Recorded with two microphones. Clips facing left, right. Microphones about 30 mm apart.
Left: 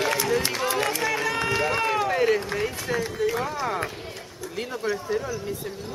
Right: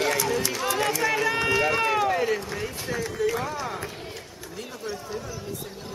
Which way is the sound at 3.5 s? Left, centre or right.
Centre.